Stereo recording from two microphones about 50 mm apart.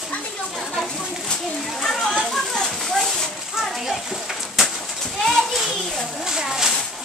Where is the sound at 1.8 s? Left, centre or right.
Centre.